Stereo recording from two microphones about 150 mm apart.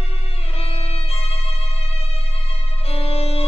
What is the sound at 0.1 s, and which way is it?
Music, 40° left (ahead or behind).